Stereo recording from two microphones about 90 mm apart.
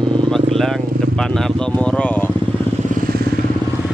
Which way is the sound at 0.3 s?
5° left (ahead or behind).